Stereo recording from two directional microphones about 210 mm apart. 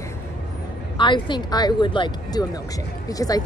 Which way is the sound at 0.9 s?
20° left (ahead or behind).